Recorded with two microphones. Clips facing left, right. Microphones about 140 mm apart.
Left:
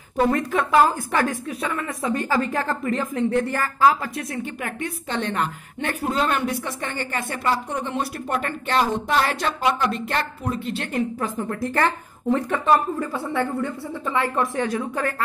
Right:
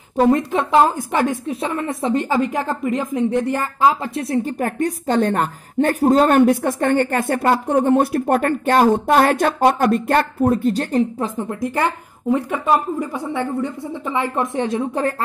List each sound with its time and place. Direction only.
0.3 s a woman's voice: 25° right (ahead or behind)
4.3 s a woman's voice: 40° right (ahead or behind)
11.1 s a woman's voice: 20° right (ahead or behind)